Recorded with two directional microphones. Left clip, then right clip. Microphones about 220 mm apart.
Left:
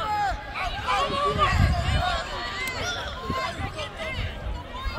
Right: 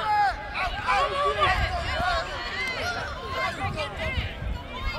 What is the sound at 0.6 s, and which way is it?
Bow-wow, 10° right (ahead or behind).